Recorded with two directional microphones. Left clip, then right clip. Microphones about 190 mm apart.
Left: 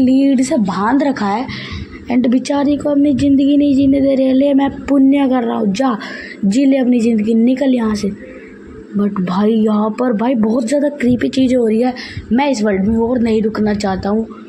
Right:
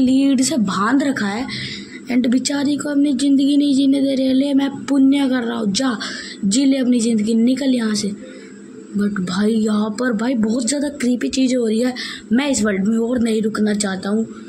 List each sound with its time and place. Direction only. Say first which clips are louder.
0.2 s speech: left 4 dB; centre (ahead or behind)
3.6 s music: left 4 dB; 30° left (ahead or behind)
3.9 s speech: left 5 dB; centre (ahead or behind)